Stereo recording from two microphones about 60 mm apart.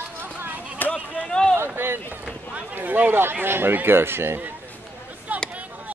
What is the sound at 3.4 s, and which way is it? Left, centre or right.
Speech, right.